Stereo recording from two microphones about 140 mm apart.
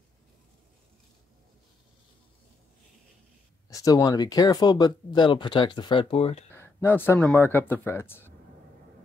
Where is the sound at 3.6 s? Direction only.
25° left (ahead or behind); by 6.4 s 45° left (ahead or behind).